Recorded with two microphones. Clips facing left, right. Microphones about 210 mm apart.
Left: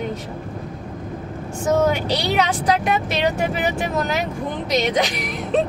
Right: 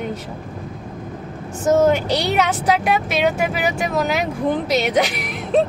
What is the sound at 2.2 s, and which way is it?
Speech, 5° right (ahead or behind).